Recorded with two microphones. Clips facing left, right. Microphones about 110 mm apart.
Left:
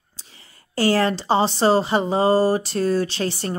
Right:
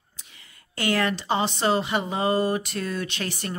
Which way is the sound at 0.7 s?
35° left (ahead or behind).